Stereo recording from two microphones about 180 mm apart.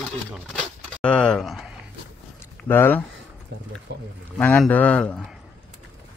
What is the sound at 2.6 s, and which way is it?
Speech, 10° left (ahead or behind).